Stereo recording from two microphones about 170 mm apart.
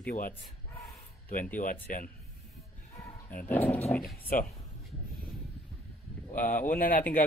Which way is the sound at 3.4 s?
10° left (ahead or behind).